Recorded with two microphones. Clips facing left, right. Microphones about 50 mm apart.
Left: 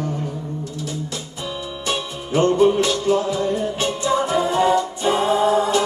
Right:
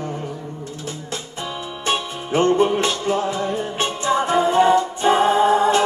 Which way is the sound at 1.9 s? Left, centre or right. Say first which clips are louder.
Right 2 dB; right.